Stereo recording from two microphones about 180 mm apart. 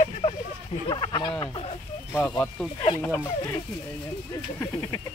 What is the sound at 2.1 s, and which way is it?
Speech, 10° left (ahead or behind).